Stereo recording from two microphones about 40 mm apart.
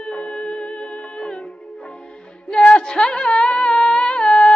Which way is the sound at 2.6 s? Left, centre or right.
Left.